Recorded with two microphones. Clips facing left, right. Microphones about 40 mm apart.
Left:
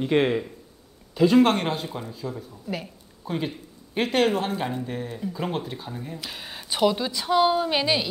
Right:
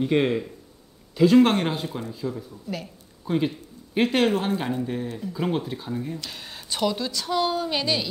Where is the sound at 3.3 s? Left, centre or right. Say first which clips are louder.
Right 4 dB; centre.